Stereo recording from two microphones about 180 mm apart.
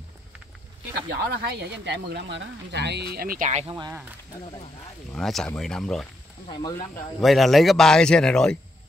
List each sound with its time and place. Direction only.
1.1 s speech: 65° right (ahead or behind); by 3.6 s 45° right (ahead or behind)
5.1 s speech: centre (ahead or behind)
7.2 s speech: centre (ahead or behind)